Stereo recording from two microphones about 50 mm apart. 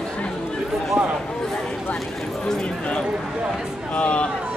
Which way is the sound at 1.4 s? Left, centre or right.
Centre.